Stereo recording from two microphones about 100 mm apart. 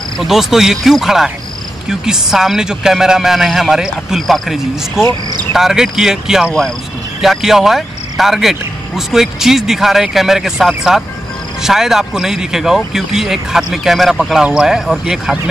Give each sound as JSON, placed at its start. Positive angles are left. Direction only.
{"t": 0.2, "sound": "speech", "side_deg": -5}